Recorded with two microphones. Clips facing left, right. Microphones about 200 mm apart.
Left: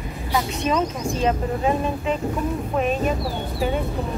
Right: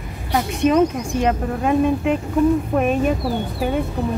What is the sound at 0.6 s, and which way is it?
Speech, 60° right (ahead or behind).